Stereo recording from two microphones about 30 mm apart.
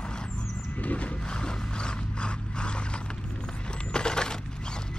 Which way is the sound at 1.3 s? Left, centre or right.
Left.